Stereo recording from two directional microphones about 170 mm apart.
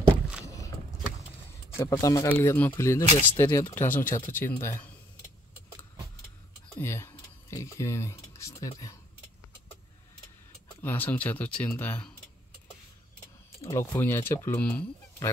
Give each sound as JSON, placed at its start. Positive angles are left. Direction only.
{"t": 0.5, "sound": "vehicle", "side_deg": 20}
{"t": 1.8, "sound": "speech", "side_deg": 20}
{"t": 3.4, "sound": "speech", "side_deg": 25}
{"t": 3.7, "sound": "speech", "side_deg": 10}
{"t": 6.8, "sound": "speech", "side_deg": 15}
{"t": 10.8, "sound": "speech", "side_deg": 10}
{"t": 13.6, "sound": "speech", "side_deg": 15}